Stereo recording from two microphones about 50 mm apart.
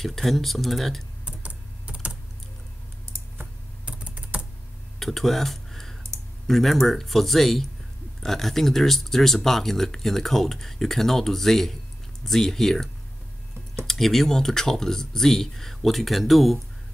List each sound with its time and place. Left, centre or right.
0.0 s speech: centre
1.2 s typing: right
3.8 s typing: right
4.9 s a sound: centre
6.4 s speech: centre